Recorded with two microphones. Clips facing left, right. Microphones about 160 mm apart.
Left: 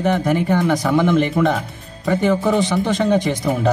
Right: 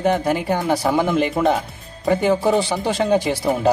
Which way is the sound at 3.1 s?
10° right (ahead or behind).